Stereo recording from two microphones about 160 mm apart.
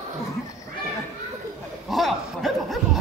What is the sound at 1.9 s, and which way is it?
Chuckle, centre (ahead or behind).